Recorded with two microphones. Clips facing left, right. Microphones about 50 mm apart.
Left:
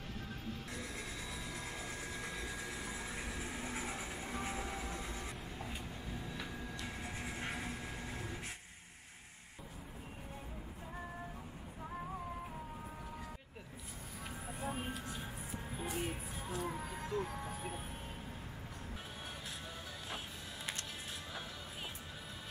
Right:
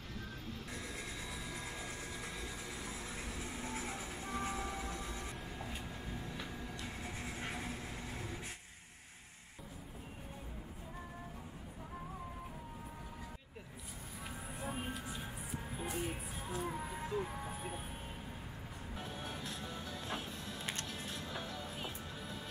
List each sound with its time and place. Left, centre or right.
0.9 s a sound: centre
4.4 s train: centre
4.9 s vehicle: centre
5.2 s vehicle: centre
6.1 s music: centre
7.1 s train: centre
14.6 s vehicle: centre
15.7 s music: centre